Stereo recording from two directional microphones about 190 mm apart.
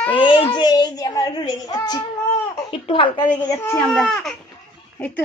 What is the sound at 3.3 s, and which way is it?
Speech, 15° left (ahead or behind).